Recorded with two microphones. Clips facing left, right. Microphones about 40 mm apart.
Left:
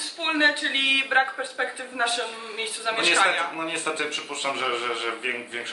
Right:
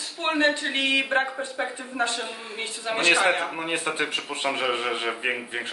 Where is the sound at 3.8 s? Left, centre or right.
Centre.